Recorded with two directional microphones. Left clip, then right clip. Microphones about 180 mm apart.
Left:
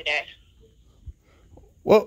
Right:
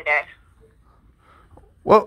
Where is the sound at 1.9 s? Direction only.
30° left (ahead or behind).